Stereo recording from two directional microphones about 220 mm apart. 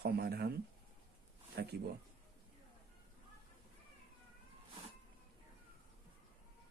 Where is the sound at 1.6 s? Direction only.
50° right (ahead or behind).